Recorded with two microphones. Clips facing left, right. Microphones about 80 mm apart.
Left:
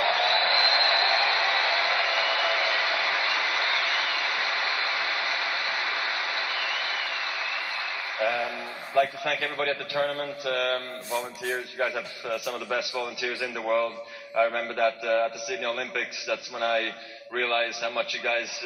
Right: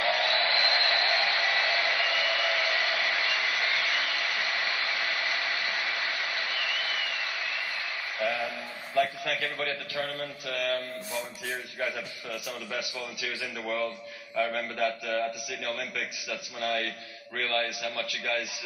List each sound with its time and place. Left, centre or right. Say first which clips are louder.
0.0 s a sound: left 3 dB; left
1.4 s hair dryer: left 2 dB; left
8.2 s a man's voice: left 3 dB; left